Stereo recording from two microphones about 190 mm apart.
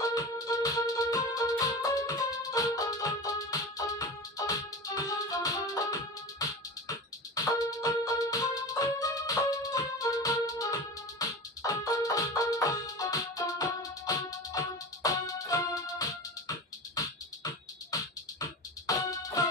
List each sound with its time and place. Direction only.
0.1 s music: 20° left (ahead or behind)
18.9 s music: 20° left (ahead or behind)